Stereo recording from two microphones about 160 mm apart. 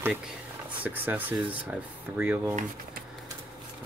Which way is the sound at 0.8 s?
10° right (ahead or behind).